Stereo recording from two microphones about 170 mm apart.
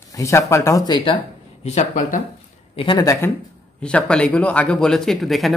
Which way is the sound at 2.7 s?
30° left (ahead or behind).